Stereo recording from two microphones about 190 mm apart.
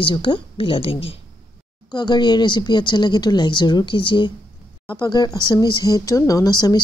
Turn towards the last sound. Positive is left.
turn(degrees=20)  # may be behind; listen again after turning